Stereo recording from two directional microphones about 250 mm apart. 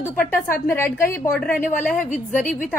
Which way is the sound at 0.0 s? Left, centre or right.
Centre.